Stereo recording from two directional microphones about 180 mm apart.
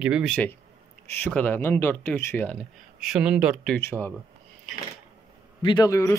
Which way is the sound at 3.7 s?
10° left (ahead or behind).